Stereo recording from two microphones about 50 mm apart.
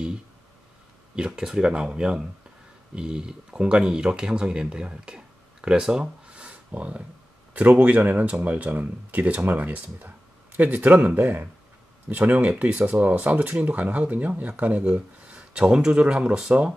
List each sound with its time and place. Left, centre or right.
1.1 s speech: centre